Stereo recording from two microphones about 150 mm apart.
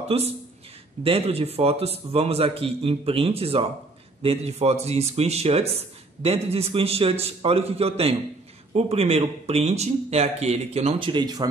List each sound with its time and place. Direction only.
0.1 s a man's voice: 40° right (ahead or behind)